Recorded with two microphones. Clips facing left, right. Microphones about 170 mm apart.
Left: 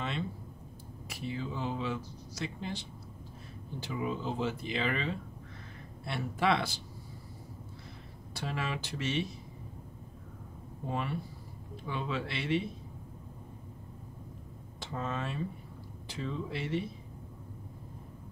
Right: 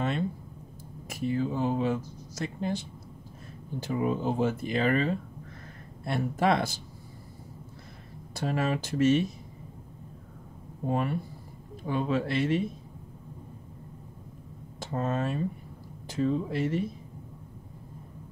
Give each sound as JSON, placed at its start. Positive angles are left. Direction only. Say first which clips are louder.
{"t": 1.0, "sound": "speech", "louder": "right 9 dB", "side_deg": -50}
{"t": 8.4, "sound": "speech", "louder": "right 8 dB", "side_deg": -45}
{"t": 10.9, "sound": "speech", "louder": "right 6 dB", "side_deg": -45}
{"t": 14.8, "sound": "speech", "louder": "right 7 dB", "side_deg": -45}